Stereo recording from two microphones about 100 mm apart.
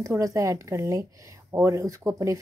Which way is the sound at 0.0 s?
35° right (ahead or behind).